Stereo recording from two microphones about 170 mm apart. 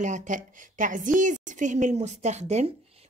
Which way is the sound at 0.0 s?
45° right (ahead or behind).